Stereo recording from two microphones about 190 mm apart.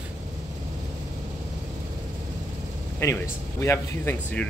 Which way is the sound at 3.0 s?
15° left (ahead or behind).